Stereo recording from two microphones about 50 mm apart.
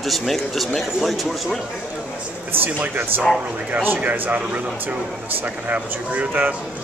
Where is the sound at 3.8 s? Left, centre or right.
Right.